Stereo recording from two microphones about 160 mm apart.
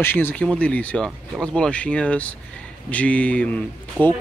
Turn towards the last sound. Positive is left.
turn(degrees=-10)  # may be behind; listen again after turning